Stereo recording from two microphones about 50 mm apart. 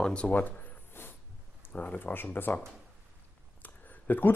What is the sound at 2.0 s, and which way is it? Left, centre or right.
Speech, left.